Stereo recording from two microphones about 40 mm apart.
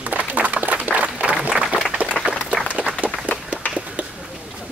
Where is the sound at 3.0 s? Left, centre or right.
Right.